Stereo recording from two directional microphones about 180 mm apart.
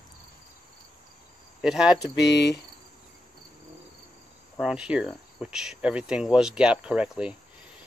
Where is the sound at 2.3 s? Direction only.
70° left (ahead or behind).